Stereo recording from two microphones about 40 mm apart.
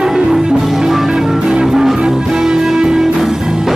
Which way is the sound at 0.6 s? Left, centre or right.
Centre.